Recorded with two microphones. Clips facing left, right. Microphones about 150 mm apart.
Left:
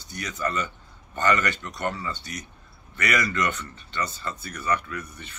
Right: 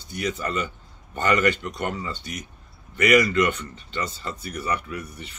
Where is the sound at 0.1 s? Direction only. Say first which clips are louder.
Right 2 dB; 15° right (ahead or behind).